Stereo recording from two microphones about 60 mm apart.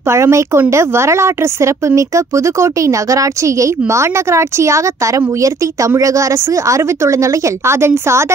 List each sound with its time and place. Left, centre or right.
0.1 s a woman's voice: right